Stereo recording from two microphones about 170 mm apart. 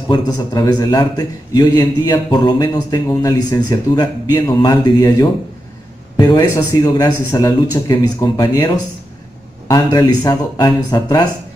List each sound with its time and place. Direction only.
0.1 s a man's voice: 25° left (ahead or behind)